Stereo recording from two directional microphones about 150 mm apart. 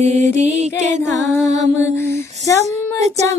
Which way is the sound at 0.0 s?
50° right (ahead or behind).